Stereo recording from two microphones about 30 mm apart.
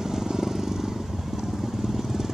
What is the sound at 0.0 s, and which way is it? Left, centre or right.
Vehicle, centre.